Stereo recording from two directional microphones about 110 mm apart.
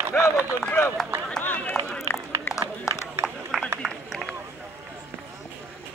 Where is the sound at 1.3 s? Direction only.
15° left (ahead or behind).